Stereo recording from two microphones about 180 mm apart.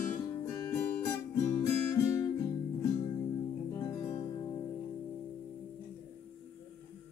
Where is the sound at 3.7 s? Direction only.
15° left (ahead or behind).